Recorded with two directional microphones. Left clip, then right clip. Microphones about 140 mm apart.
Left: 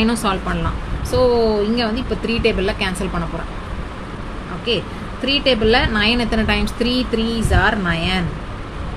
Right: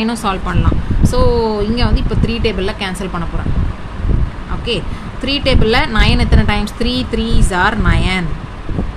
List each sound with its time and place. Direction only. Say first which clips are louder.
0.0 s speech: right 1 dB; 10° right (ahead or behind)
1.1 s a woman's voice: even; 35° right (ahead or behind)
4.6 s a woman's voice: right 1 dB; 35° right (ahead or behind)